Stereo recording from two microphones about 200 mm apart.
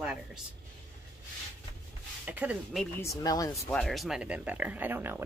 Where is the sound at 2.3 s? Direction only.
5° right (ahead or behind).